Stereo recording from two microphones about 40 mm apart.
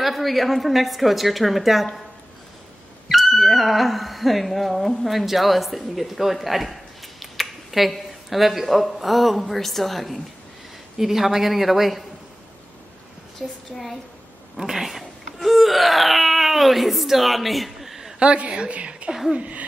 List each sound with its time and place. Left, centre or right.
0.0 s a woman's voice: centre
3.1 s speech: centre
13.4 s speech: centre
14.6 s wail: centre
18.2 s a woman's voice: right
19.3 s a sound: right